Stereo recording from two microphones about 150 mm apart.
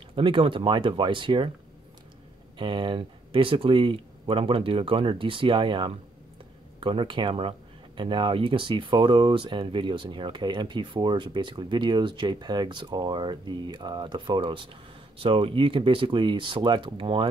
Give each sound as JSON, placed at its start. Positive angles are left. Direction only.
{"t": 0.1, "sound": "speech", "side_deg": -35}
{"t": 2.6, "sound": "speech", "side_deg": -35}